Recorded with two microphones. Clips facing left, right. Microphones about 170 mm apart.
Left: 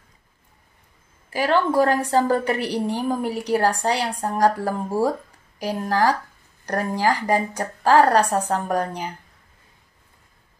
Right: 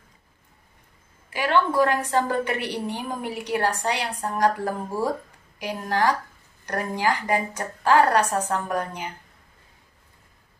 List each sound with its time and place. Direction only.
1.3 s a woman's voice: 40° left (ahead or behind)